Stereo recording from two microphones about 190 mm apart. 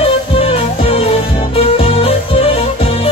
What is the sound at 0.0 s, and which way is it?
Music, 30° left (ahead or behind).